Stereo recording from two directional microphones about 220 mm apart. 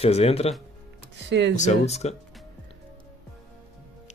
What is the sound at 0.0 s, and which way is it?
Speech, 25° left (ahead or behind).